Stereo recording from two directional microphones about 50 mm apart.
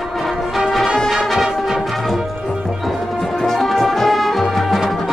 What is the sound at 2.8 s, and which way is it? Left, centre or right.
Music, centre.